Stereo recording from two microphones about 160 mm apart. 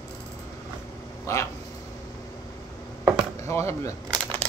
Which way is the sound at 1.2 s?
20° left (ahead or behind).